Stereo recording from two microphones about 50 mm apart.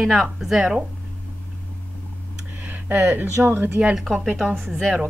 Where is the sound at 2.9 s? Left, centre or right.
Right.